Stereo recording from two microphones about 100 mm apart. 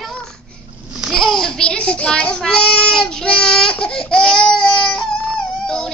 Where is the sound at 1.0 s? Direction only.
Centre (ahead or behind).